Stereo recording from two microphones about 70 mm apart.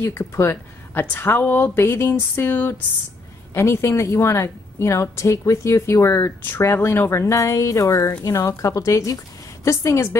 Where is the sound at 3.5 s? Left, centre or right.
Left.